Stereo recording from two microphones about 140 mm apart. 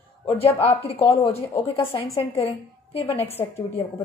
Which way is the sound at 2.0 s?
25° left (ahead or behind).